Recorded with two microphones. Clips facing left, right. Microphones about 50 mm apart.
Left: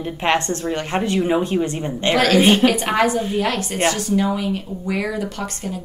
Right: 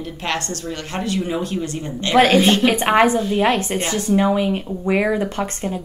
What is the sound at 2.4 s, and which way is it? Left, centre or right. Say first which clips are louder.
Speech: left 2 dB; centre.